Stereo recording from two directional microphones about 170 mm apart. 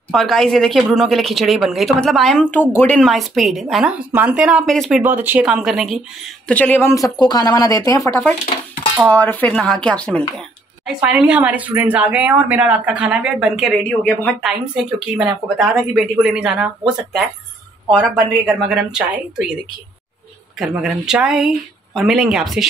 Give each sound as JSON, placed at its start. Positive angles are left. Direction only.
{"t": 0.1, "sound": "speech", "side_deg": 0}
{"t": 5.0, "sound": "speech", "side_deg": -10}
{"t": 11.0, "sound": "speech", "side_deg": -10}
{"t": 20.5, "sound": "speech", "side_deg": -5}